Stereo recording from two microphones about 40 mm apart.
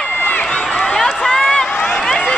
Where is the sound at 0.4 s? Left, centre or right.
Left.